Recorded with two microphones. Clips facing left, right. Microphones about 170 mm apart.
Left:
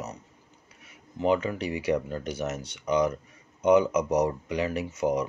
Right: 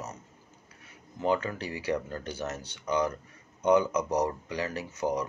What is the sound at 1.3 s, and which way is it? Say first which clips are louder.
Speech: left 3 dB; 15° left (ahead or behind).